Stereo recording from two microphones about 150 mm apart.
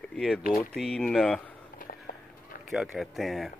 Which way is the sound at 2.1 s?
70° left (ahead or behind).